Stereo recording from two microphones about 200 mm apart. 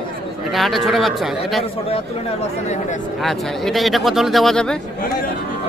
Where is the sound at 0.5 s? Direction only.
Centre (ahead or behind).